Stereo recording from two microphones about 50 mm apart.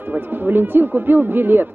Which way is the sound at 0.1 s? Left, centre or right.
Right.